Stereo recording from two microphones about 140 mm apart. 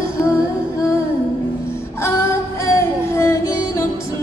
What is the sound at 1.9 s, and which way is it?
Music, 20° left (ahead or behind).